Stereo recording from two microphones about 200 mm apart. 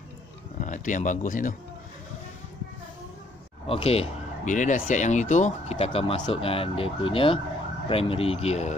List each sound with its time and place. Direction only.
0.6 s speech: 40° left (ahead or behind)
3.6 s speech: 30° left (ahead or behind)